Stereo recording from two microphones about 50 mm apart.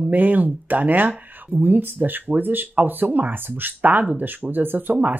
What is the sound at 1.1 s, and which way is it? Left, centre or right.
Speech, right.